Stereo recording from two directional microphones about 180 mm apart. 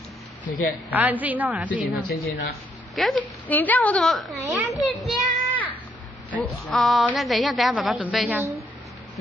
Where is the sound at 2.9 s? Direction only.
5° left (ahead or behind).